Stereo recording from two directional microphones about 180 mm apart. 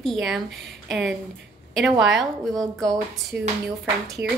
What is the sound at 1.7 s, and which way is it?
A woman's voice, centre (ahead or behind).